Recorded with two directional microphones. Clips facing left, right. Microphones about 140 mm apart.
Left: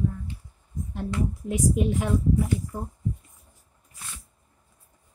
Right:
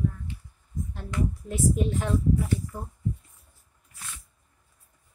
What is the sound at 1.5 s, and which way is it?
Speech, 15° left (ahead or behind).